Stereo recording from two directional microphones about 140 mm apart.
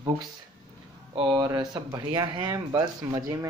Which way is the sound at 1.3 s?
25° right (ahead or behind).